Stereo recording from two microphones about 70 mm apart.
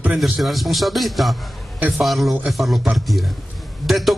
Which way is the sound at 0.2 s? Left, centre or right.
Centre.